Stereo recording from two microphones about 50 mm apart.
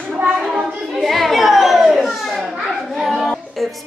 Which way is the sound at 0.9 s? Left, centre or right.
Centre.